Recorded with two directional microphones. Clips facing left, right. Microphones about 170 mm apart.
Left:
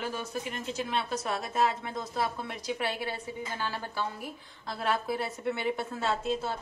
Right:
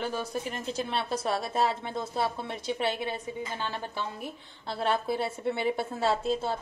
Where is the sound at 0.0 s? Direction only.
35° right (ahead or behind).